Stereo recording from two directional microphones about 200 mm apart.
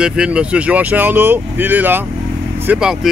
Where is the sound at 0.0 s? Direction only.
5° right (ahead or behind).